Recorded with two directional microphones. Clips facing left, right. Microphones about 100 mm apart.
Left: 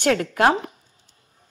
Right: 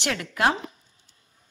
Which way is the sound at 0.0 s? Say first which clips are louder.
Left 6 dB; 40° left (ahead or behind).